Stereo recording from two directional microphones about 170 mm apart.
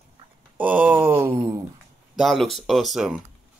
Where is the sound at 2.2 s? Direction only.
Centre (ahead or behind).